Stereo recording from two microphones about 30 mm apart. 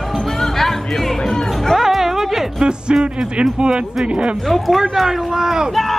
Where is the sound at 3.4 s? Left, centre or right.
Right.